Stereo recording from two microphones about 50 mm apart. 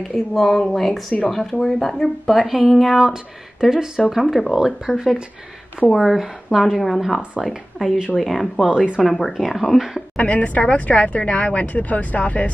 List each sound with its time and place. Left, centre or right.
0.1 s a woman's voice: centre
3.7 s speech: centre
4.3 s a woman's voice: centre
8.6 s speech: centre
9.1 s a woman's voice: centre
10.1 s speech: left